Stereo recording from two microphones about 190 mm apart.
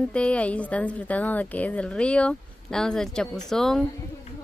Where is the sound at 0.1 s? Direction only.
5° left (ahead or behind).